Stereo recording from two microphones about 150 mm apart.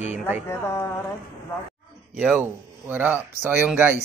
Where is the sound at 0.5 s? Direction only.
15° left (ahead or behind).